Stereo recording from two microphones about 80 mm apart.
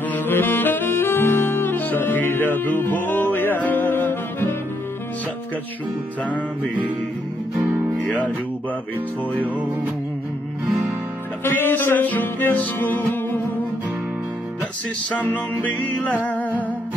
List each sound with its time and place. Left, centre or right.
0.1 s saxophone: left
6.2 s music: centre
7.5 s music: centre
11.4 s music: left
15.1 s music: centre